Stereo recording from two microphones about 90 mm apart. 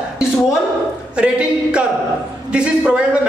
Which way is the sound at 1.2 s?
10° right (ahead or behind).